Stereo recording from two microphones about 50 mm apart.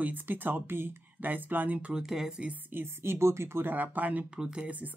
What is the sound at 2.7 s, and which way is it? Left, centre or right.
Speech, right.